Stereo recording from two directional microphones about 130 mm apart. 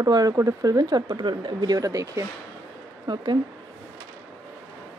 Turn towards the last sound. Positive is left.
turn(degrees=-35)  # may be behind; listen again after turning